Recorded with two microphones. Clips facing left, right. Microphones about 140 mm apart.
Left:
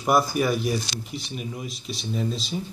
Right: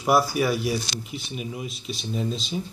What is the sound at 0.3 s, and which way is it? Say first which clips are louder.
Speech: even; 5° right (ahead or behind).